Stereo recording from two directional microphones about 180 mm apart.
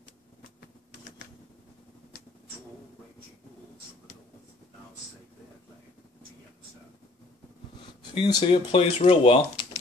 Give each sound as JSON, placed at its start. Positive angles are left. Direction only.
{"t": 8.1, "sound": "speech", "side_deg": 30}